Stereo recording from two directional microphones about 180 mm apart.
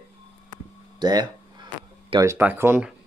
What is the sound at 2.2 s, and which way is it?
Speech, 10° right (ahead or behind).